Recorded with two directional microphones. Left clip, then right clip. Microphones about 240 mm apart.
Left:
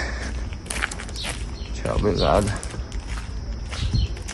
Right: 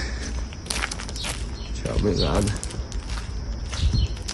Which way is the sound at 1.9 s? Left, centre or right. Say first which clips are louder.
Left 4 dB; centre.